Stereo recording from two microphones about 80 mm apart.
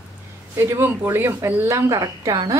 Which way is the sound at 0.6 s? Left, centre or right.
Right.